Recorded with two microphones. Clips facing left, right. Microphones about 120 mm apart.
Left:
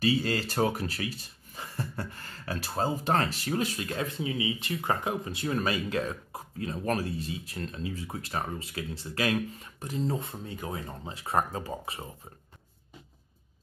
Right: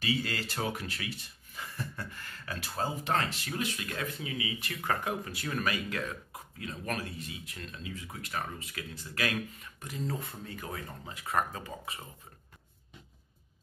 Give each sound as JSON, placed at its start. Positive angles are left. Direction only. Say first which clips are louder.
{"t": 0.0, "sound": "speech", "louder": "left 6 dB", "side_deg": 35}